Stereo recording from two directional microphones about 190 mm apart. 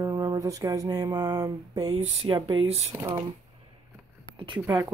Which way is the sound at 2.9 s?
15° right (ahead or behind).